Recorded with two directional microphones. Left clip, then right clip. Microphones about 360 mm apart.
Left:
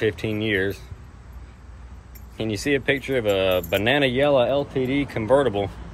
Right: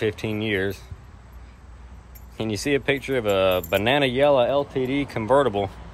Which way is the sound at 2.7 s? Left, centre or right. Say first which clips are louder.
Left 1 dB; right.